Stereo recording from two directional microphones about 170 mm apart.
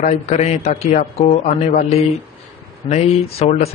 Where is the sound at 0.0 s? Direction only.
40° left (ahead or behind).